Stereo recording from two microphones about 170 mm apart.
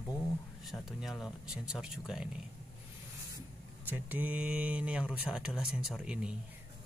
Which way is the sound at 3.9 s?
10° right (ahead or behind).